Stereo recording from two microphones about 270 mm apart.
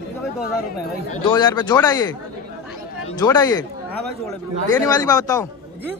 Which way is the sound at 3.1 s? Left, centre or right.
Centre.